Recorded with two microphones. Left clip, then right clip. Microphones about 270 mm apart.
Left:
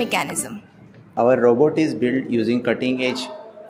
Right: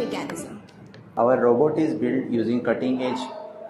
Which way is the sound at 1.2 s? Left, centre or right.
Left.